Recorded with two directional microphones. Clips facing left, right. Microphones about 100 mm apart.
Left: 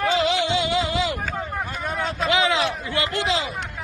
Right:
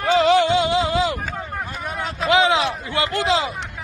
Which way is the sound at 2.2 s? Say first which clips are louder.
Right 4 dB; 30° right (ahead or behind).